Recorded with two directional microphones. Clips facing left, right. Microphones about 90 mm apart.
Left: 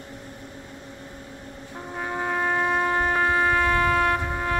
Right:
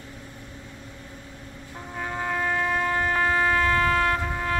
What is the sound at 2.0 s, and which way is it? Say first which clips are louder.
Music: left 2 dB; 20° left (ahead or behind).